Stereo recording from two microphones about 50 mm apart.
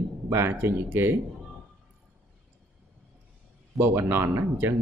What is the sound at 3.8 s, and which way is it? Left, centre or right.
Speech, right.